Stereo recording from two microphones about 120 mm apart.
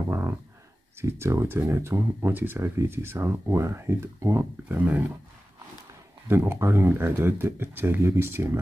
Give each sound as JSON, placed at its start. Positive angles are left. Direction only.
{"t": 0.1, "sound": "speech", "side_deg": -20}
{"t": 6.2, "sound": "speech", "side_deg": -20}